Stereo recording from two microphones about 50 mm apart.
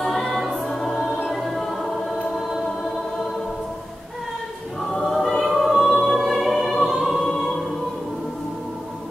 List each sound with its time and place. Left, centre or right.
0.0 s choir: centre
1.0 s music: centre
4.9 s music: centre